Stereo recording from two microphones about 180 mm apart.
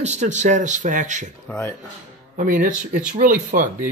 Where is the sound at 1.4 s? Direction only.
10° left (ahead or behind).